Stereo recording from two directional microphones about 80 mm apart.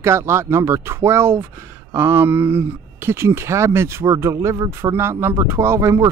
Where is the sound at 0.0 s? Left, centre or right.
Right.